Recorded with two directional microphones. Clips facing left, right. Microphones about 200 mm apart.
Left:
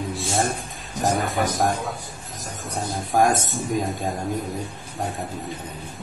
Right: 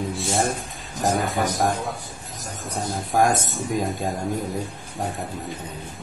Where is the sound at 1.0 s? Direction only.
Centre (ahead or behind).